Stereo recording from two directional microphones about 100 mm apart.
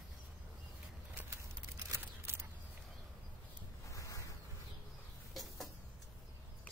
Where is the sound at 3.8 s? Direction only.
35° left (ahead or behind).